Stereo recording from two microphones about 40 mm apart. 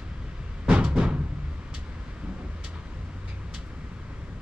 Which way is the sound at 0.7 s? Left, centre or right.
Right.